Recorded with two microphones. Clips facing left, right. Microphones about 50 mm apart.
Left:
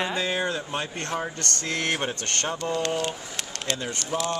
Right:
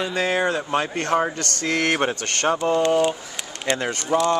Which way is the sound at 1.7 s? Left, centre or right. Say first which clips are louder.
Right 6 dB; right.